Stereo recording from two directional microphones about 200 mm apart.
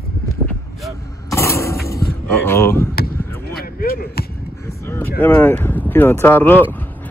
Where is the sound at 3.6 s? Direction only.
45° left (ahead or behind).